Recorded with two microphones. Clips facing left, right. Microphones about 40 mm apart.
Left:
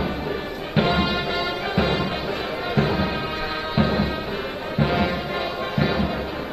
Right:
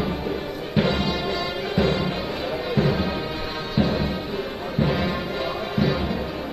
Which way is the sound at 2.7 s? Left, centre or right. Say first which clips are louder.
Left 1 dB; centre.